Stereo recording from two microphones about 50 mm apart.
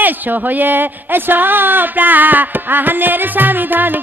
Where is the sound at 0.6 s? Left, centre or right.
Right.